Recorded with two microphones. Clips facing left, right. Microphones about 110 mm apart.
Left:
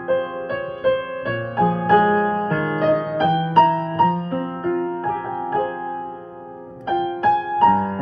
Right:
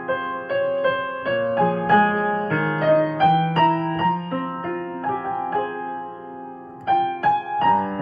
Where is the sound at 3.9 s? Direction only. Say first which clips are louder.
Left 3 dB; 25° left (ahead or behind).